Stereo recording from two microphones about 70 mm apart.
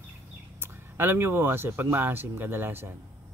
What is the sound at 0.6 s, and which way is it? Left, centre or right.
Speech, right.